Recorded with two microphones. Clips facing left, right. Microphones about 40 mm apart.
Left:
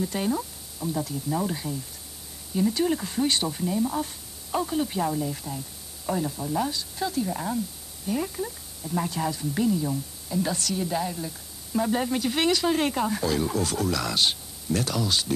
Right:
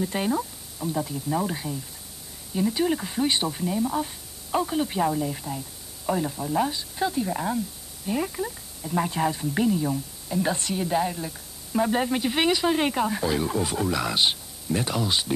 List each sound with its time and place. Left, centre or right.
0.0 s a woman's voice: centre